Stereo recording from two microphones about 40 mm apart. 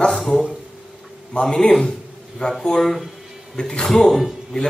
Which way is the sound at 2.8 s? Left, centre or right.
Centre.